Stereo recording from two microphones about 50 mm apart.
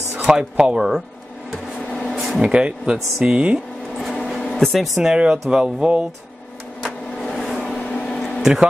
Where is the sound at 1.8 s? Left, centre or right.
Centre.